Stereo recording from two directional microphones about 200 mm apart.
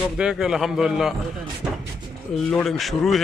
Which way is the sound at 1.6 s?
5° right (ahead or behind).